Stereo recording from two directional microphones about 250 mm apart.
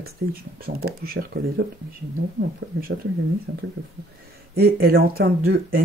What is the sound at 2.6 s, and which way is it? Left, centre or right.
Speech, right.